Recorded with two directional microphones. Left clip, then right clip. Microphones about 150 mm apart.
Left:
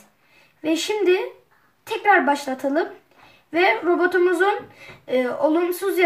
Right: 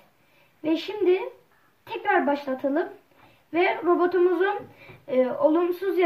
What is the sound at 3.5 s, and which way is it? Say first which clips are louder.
Speech: left 4 dB; 25° left (ahead or behind).